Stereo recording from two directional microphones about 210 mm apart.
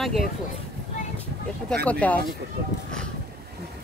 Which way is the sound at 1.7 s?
5° left (ahead or behind).